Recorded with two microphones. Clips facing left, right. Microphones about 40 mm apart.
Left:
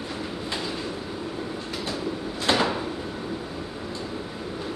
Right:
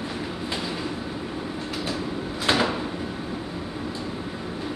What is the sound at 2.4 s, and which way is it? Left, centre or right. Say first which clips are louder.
Door: even; centre.